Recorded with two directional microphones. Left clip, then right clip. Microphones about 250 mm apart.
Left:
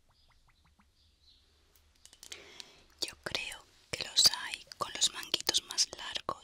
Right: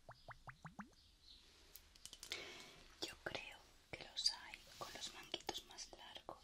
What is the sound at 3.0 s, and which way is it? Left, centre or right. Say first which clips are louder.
Whispering: left 11 dB; left.